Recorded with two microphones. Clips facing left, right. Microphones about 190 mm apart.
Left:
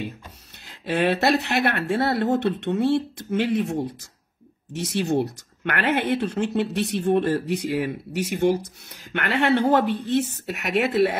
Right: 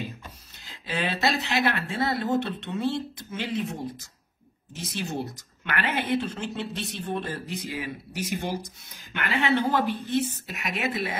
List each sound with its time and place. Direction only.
0.7 s speech: 65° left (ahead or behind)
4.7 s speech: 65° left (ahead or behind)